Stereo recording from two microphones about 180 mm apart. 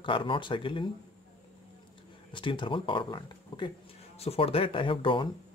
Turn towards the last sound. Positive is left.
turn(degrees=30)  # may be behind; listen again after turning